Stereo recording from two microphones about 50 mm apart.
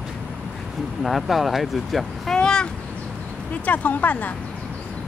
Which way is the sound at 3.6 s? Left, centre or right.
Left.